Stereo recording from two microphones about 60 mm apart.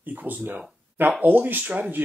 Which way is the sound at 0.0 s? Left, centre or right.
Right.